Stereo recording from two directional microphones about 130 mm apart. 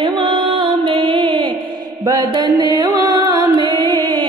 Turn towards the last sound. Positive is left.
turn(degrees=-35)  # may be behind; listen again after turning